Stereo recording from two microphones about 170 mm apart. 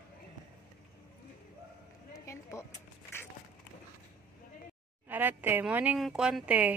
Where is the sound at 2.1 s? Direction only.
15° left (ahead or behind).